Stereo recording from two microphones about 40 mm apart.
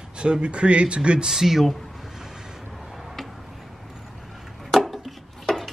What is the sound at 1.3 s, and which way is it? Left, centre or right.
Speech, centre.